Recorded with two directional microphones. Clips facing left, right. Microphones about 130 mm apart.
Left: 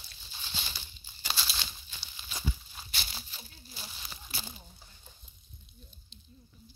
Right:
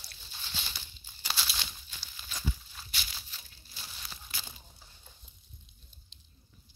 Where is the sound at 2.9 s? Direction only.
35° left (ahead or behind).